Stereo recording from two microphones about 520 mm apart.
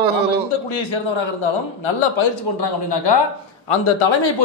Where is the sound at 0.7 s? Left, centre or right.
Left.